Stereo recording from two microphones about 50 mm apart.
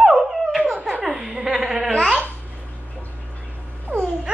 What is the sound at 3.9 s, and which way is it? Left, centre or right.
Babbling, right.